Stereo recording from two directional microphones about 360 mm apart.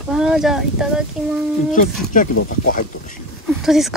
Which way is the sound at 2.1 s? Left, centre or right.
Left.